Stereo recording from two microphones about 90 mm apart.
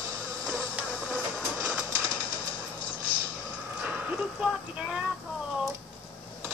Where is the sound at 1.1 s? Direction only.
10° right (ahead or behind).